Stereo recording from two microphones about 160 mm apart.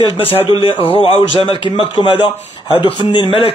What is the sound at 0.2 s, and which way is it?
Speech, 35° left (ahead or behind).